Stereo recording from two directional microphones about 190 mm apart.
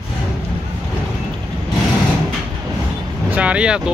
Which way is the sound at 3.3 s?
5° right (ahead or behind).